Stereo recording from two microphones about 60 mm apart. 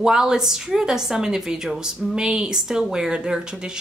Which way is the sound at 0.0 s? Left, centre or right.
Centre.